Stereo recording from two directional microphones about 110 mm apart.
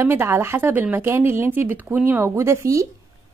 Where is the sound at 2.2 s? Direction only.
25° right (ahead or behind).